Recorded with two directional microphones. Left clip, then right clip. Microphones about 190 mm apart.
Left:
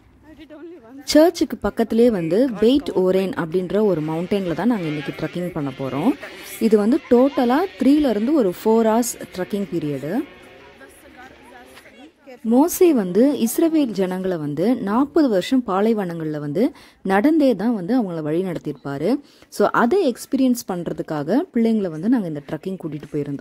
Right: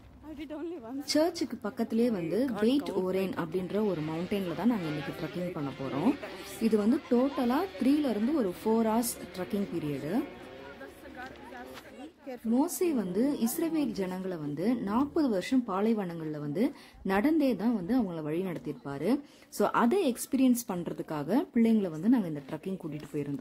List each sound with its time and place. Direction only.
1.0 s a woman's voice: 45° left (ahead or behind)
12.4 s a woman's voice: 45° left (ahead or behind)